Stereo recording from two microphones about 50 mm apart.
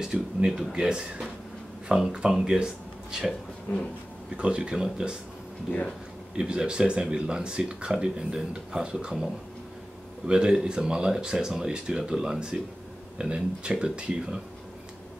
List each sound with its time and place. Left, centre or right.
0.0 s speech: centre
0.5 s speech: centre
0.7 s speech: centre
4.4 s speech: right
6.3 s speech: centre
10.2 s speech: centre